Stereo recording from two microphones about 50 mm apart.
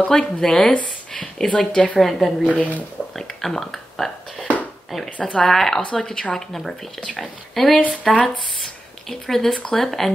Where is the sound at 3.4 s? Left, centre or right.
Centre.